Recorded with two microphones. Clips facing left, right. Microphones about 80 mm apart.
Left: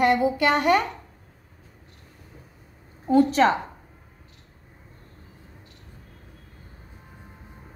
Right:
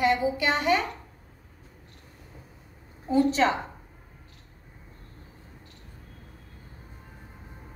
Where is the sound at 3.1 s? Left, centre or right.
Left.